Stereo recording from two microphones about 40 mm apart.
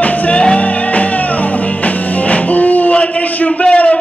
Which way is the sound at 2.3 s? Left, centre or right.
Left.